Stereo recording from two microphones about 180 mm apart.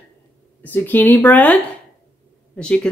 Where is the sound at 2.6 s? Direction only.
5° left (ahead or behind).